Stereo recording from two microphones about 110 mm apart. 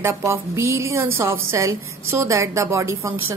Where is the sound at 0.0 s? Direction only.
25° right (ahead or behind).